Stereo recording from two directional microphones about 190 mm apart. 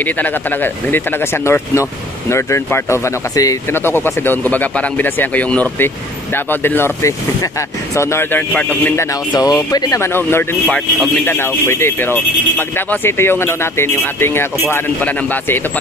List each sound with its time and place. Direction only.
0.0 s speech: 10° left (ahead or behind)